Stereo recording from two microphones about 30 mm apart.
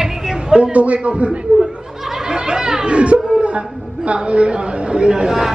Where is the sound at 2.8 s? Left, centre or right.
Right.